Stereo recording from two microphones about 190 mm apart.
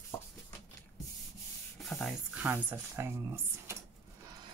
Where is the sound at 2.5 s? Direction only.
10° right (ahead or behind).